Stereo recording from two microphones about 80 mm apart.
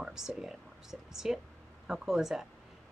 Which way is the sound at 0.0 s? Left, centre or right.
Centre.